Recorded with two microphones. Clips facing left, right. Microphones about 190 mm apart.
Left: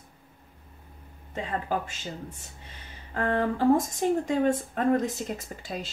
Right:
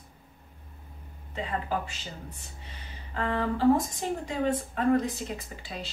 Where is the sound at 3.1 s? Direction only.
50° left (ahead or behind).